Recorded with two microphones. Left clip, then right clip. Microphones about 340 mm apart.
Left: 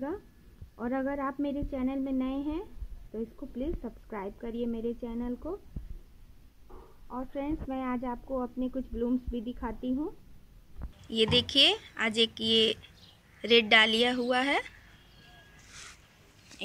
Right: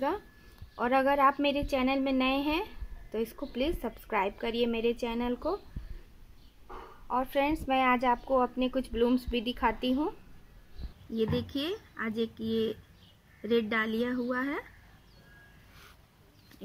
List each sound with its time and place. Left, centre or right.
0.7 s a woman's voice: right
6.7 s a woman's voice: right
11.1 s a woman's voice: centre